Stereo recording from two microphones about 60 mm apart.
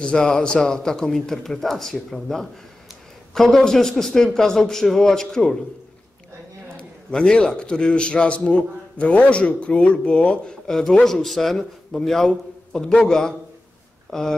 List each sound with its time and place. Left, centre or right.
0.0 s speech: centre
6.8 s a man's voice: centre
10.7 s speech: centre